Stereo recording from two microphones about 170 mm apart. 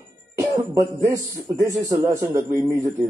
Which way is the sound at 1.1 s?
20° right (ahead or behind).